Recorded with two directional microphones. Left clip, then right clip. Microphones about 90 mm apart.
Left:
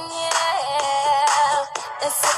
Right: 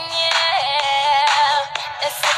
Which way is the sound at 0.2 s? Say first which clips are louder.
Right 4 dB; 30° right (ahead or behind).